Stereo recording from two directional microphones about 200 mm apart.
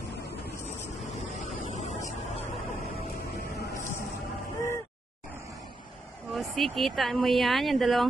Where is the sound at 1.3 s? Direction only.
35° left (ahead or behind).